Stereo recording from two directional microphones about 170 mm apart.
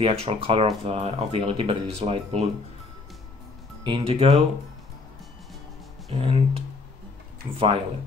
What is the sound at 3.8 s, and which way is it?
Speech, 30° right (ahead or behind).